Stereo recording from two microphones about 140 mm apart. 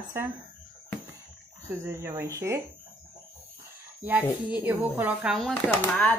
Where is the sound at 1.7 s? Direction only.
20° right (ahead or behind).